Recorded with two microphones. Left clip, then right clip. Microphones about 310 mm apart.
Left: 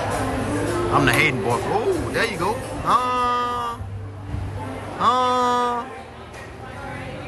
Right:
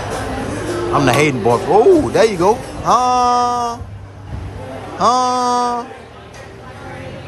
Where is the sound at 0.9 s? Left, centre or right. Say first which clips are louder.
Right 5 dB; centre.